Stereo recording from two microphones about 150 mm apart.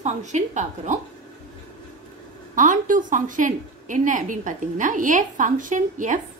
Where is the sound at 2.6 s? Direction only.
60° right (ahead or behind).